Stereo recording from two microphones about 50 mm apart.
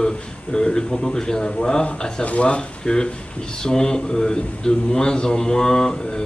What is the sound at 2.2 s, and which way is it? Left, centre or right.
Speech, left.